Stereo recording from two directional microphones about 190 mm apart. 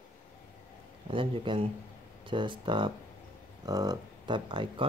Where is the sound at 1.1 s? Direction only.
25° right (ahead or behind).